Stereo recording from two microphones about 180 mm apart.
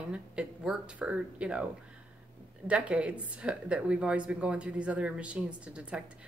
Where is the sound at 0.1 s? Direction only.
5° right (ahead or behind).